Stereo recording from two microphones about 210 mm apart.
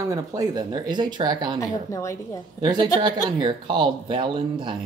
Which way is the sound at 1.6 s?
15° left (ahead or behind).